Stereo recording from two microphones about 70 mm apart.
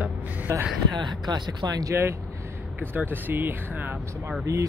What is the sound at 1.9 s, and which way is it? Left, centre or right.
Speech, right.